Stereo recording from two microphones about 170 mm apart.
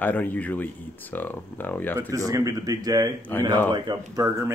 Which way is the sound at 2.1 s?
20° right (ahead or behind).